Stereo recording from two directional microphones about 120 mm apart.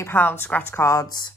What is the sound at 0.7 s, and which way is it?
Speech, 25° left (ahead or behind).